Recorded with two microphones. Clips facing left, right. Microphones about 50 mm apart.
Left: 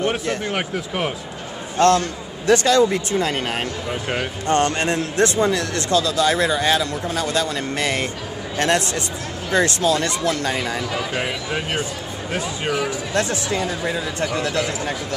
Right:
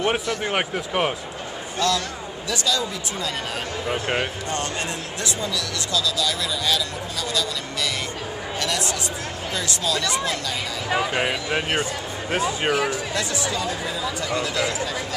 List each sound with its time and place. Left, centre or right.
0.4 s speech: centre
1.8 s a man's voice: left
3.9 s speech: centre
4.5 s a man's voice: left
11.0 s speech: centre
13.1 s a man's voice: left